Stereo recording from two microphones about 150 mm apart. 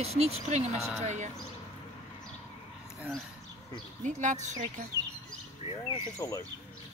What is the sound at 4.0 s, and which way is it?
Speech, 55° right (ahead or behind).